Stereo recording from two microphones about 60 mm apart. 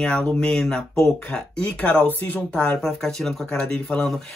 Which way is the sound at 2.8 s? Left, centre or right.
Centre.